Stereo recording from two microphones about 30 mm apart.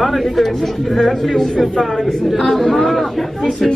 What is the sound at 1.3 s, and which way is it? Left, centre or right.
A man's voice, centre.